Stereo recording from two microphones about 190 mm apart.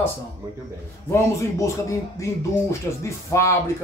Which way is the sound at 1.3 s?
15° left (ahead or behind).